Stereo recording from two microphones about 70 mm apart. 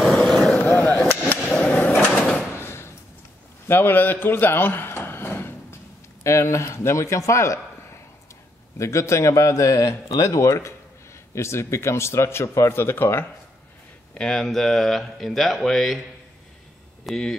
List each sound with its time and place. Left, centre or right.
0.3 s a sound: centre
0.6 s a sound: left
1.3 s drawer open or close: left
2.5 s a sound: left
3.6 s a man's voice: left
6.2 s a man's voice: left
8.7 s a man's voice: left
14.1 s speech: centre
17.1 s speech: centre